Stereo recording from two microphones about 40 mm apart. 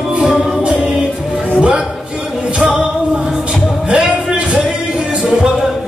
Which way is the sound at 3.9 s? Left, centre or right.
Right.